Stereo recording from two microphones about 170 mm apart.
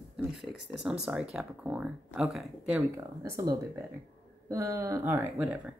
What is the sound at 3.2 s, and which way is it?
A woman's voice, 20° right (ahead or behind).